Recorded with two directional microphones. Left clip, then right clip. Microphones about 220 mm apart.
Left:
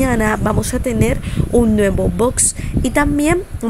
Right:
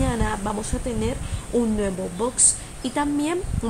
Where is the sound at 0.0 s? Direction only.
30° left (ahead or behind).